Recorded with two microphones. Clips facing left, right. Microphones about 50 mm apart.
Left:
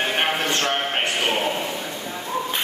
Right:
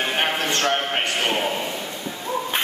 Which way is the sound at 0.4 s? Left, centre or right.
Centre.